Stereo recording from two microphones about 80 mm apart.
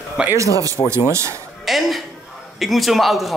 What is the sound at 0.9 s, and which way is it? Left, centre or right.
Speech, right.